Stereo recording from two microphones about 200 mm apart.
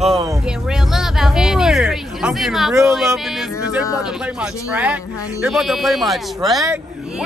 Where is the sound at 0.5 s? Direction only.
5° right (ahead or behind).